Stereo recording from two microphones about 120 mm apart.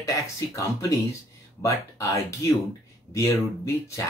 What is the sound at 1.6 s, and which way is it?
Speech, 25° left (ahead or behind).